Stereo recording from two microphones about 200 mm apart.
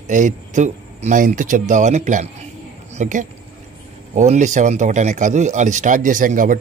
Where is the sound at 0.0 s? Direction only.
40° right (ahead or behind).